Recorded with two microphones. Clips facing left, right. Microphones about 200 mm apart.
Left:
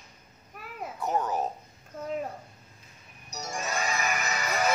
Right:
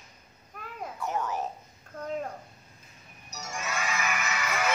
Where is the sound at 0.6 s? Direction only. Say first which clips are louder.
Right 1 dB; 5° left (ahead or behind).